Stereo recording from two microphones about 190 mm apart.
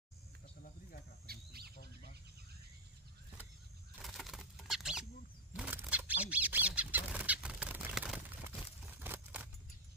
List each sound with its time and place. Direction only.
1.2 s bird: 55° right (ahead or behind)
4.0 s a sound: centre (ahead or behind)
5.5 s bird: 5° right (ahead or behind)
9.0 s keys jangling: 10° right (ahead or behind)